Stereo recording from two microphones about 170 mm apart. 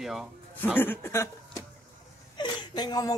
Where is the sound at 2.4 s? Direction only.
25° left (ahead or behind).